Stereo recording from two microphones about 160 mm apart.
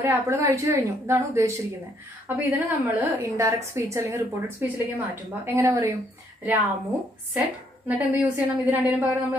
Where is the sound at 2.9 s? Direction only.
15° right (ahead or behind).